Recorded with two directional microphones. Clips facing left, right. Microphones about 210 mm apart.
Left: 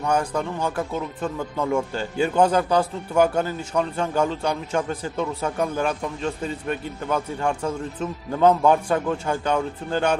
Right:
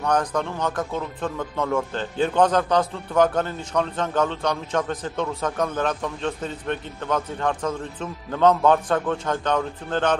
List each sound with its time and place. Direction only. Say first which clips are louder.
0.0 s speech: even; 10° left (ahead or behind)